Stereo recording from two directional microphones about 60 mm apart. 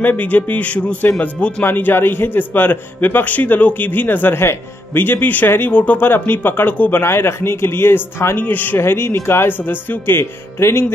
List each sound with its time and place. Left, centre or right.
0.0 s a man's voice: left
6.0 s a man's voice: left
7.0 s speech: left
8.4 s a man's voice: left